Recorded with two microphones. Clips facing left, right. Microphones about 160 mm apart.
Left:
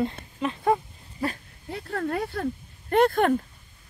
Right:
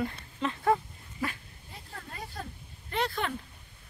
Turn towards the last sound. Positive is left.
turn(degrees=50)  # may be behind; listen again after turning